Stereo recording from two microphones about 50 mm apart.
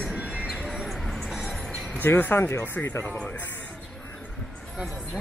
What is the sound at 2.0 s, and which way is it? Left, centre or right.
Speech, left.